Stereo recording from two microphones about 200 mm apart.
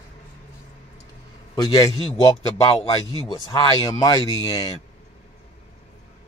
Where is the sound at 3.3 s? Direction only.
20° left (ahead or behind).